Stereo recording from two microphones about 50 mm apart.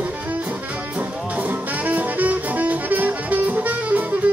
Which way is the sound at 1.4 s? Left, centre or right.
Right.